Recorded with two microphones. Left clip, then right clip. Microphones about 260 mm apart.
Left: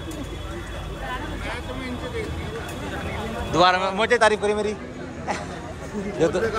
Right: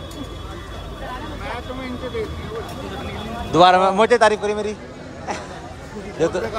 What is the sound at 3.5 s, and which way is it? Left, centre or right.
Speech, centre.